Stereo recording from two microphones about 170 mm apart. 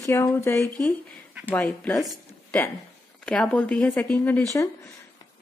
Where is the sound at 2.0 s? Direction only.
5° left (ahead or behind).